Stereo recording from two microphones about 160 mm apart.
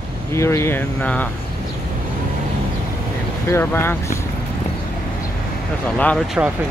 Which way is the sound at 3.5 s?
15° left (ahead or behind).